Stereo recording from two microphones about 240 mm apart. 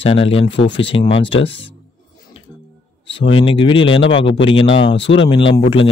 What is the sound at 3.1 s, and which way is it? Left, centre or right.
Speech, left.